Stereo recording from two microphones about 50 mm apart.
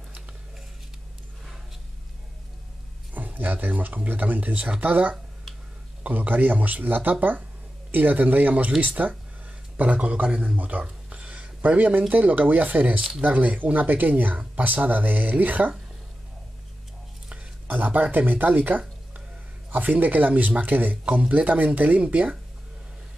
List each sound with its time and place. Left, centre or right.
3.3 s speech: right
10.2 s speech: centre
10.5 s speech: right
11.1 s a sound: centre
11.6 s speech: right
17.6 s speech: right
21.0 s speech: centre
21.3 s speech: right